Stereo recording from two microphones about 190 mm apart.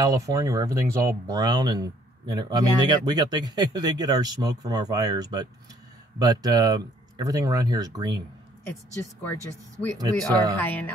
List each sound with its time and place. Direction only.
0.0 s speech: 15° right (ahead or behind)
9.2 s speech: 10° left (ahead or behind)
9.9 s speech: 20° right (ahead or behind)
10.6 s speech: 10° left (ahead or behind)